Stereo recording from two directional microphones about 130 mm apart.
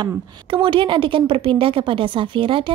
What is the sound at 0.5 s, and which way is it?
A woman's voice, 40° right (ahead or behind).